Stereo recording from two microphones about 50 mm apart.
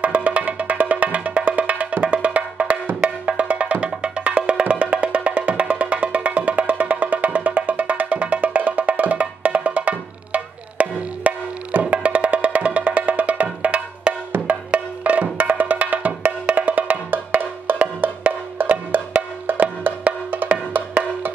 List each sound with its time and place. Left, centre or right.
0.0 s music: right
14.5 s wood block: right